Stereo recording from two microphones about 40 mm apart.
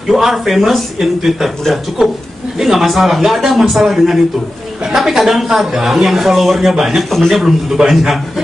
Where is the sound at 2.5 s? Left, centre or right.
Centre.